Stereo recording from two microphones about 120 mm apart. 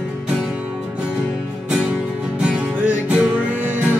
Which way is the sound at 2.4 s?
10° right (ahead or behind).